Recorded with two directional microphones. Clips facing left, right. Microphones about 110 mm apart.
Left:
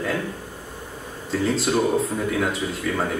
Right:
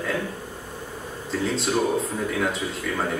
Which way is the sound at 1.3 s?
Centre (ahead or behind).